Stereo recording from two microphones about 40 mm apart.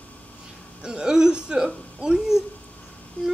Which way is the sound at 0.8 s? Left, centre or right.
Right.